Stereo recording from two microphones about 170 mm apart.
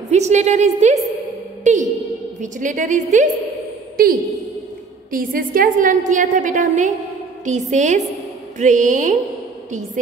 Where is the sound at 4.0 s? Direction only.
60° right (ahead or behind).